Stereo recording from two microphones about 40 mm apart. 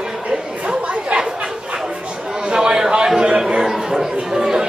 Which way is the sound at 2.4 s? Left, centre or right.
Right.